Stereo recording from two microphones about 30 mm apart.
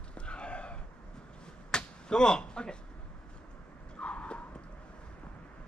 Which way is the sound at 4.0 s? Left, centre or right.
Left.